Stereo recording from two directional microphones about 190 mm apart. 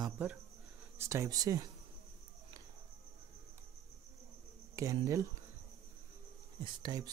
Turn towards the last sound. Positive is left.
turn(degrees=-20)  # may be behind; listen again after turning